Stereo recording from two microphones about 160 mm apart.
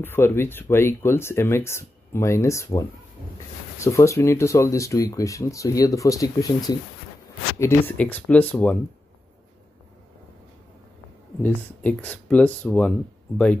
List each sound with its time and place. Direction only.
0.0 s speech: 15° left (ahead or behind)
11.4 s speech: 10° left (ahead or behind)